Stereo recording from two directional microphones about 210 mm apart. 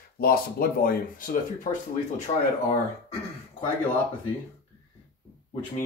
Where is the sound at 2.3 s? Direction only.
30° left (ahead or behind).